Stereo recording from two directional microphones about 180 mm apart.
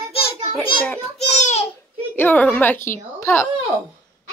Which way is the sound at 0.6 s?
10° left (ahead or behind).